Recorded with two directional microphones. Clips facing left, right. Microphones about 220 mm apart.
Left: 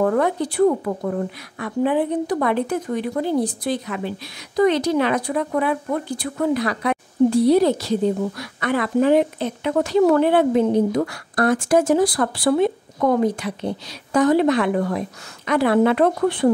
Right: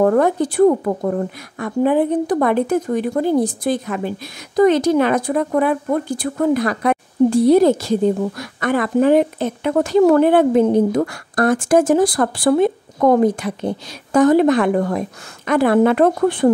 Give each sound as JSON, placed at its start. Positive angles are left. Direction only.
{"t": 0.0, "sound": "a woman's voice", "side_deg": -45}